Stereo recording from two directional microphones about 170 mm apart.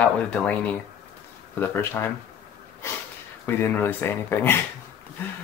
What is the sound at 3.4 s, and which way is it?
Speech, 10° left (ahead or behind).